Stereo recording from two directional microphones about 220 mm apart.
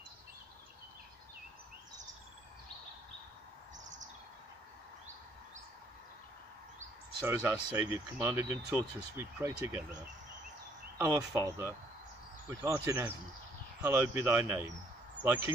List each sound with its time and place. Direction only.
7.2 s speech: 10° right (ahead or behind)
11.0 s speech: 15° right (ahead or behind)